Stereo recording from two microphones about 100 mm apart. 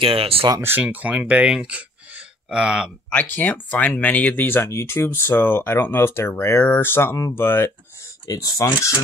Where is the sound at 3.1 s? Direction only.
15° left (ahead or behind).